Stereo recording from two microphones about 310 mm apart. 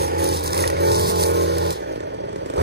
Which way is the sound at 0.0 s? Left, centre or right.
Right.